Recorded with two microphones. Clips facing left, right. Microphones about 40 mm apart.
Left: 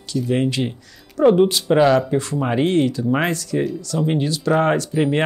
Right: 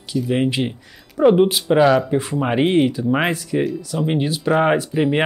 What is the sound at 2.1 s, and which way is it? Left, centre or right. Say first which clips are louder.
Speech: right 1 dB; centre.